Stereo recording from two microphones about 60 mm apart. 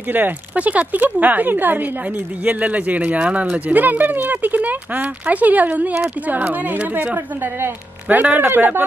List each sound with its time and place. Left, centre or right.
0.1 s speech: right